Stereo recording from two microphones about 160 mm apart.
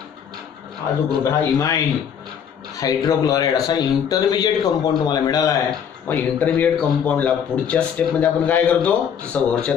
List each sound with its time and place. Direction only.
1.2 s speech: 20° left (ahead or behind)
2.8 s speech: 20° left (ahead or behind)
6.0 s a man's voice: 10° left (ahead or behind)